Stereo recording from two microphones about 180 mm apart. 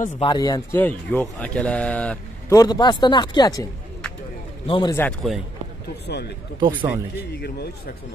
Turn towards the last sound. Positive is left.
turn(degrees=60)  # may be behind; listen again after turning